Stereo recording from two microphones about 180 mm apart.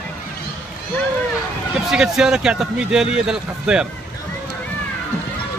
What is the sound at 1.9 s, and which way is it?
Speech, 5° right (ahead or behind).